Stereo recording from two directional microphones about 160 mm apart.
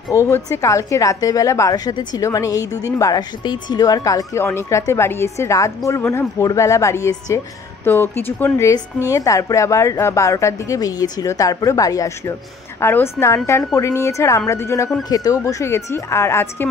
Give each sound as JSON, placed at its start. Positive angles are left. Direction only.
{"t": 0.1, "sound": "a woman's voice", "side_deg": 20}